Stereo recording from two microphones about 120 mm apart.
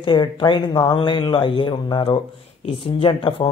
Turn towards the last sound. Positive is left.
turn(degrees=50)  # may be behind; listen again after turning